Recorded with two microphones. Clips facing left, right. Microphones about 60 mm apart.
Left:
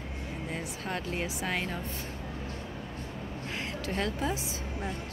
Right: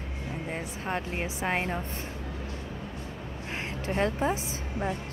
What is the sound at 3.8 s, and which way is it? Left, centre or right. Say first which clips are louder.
Speech: right 5 dB; right.